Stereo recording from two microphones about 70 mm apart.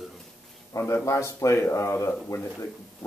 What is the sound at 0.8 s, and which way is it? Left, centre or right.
Speech, left.